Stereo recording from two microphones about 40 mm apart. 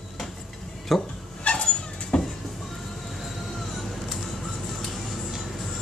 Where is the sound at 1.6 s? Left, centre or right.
Centre.